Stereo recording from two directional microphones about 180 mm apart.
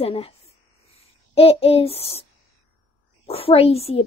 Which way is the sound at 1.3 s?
35° left (ahead or behind).